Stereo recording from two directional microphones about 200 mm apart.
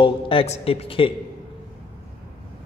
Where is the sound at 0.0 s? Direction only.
25° left (ahead or behind).